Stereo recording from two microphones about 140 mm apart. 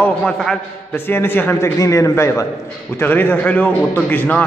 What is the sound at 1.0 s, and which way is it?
A man's voice, 15° left (ahead or behind).